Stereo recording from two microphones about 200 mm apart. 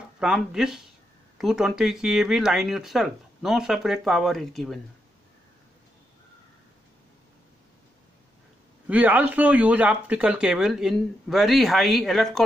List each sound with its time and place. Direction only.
0.2 s speech: 5° right (ahead or behind)
8.8 s speech: 10° right (ahead or behind)